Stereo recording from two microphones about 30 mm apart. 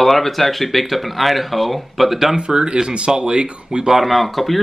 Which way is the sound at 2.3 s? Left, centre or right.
Right.